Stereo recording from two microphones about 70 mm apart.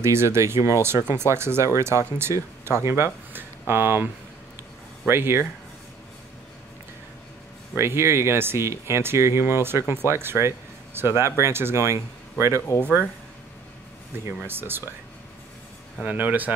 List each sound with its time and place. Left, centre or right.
0.0 s speech: right
7.7 s speech: right
14.4 s speech: right
16.0 s speech: right